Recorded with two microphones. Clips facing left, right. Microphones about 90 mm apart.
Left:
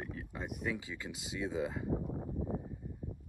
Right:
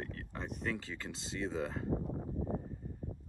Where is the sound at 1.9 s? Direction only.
5° right (ahead or behind).